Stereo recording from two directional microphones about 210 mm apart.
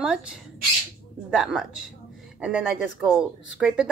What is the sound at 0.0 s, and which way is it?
A woman's voice, 5° right (ahead or behind).